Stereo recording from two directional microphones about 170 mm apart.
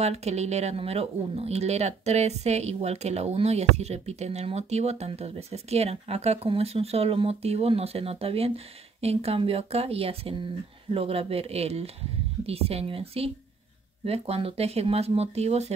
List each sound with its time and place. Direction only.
0.0 s speech: 40° right (ahead or behind)